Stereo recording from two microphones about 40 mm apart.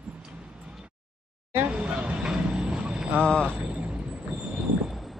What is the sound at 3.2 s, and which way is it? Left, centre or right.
Speech, left.